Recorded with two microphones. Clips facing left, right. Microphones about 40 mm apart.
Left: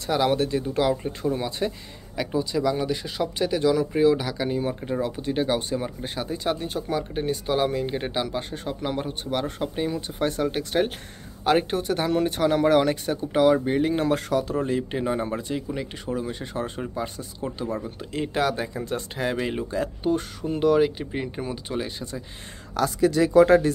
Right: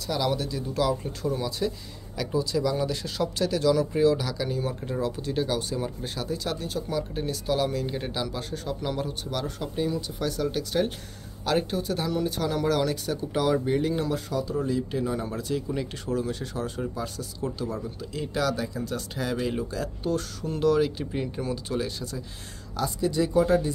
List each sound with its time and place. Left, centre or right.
0.0 s speech: left
13.9 s speech: left
22.8 s speech: left